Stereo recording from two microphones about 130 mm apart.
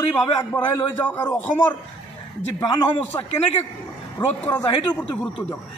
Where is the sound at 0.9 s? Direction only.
15° left (ahead or behind).